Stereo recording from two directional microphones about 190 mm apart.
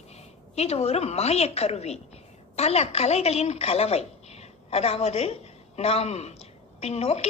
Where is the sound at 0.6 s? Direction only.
35° left (ahead or behind).